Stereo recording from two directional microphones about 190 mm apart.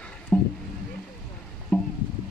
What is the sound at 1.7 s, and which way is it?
Boat, 5° left (ahead or behind).